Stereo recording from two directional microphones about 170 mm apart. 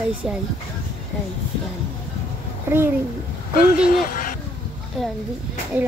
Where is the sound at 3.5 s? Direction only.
55° left (ahead or behind).